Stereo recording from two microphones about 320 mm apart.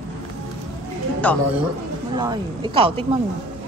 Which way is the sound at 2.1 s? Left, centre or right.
Centre.